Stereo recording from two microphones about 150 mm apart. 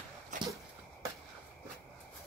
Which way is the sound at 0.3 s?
55° right (ahead or behind).